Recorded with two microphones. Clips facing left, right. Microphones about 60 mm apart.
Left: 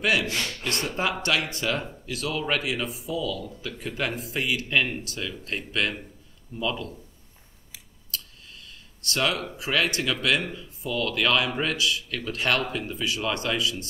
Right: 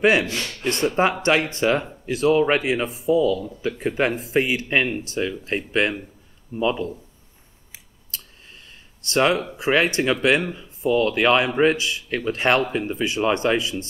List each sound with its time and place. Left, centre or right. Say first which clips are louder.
0.0 s a man's voice: right 6 dB; right
7.7 s scissors: left 2 dB; right
10.2 s a man's voice: right 6 dB; right